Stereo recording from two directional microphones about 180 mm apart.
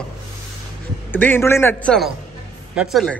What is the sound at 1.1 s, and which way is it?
A man's voice, 10° left (ahead or behind).